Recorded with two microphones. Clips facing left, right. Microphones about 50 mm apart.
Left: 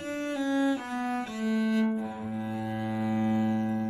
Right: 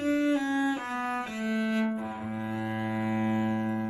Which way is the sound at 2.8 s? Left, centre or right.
Right.